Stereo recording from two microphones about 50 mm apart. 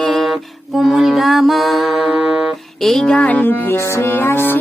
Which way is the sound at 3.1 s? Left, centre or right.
Left.